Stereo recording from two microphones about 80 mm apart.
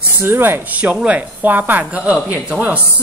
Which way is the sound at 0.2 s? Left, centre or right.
Right.